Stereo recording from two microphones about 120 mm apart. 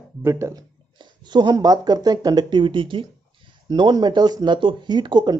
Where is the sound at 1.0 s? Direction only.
40° right (ahead or behind).